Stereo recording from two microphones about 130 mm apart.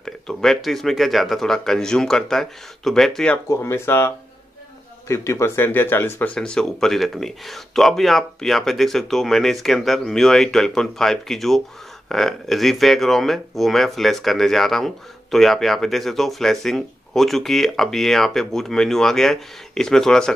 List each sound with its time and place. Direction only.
0.0 s speech: 5° left (ahead or behind)
3.4 s speech: 20° left (ahead or behind); by 20.3 s 5° left (ahead or behind)